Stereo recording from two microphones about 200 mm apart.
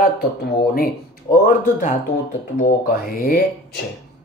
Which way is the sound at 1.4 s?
40° left (ahead or behind).